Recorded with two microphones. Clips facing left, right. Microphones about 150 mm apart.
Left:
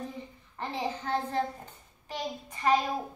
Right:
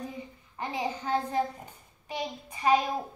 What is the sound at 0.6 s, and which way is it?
A child's voice, 10° right (ahead or behind).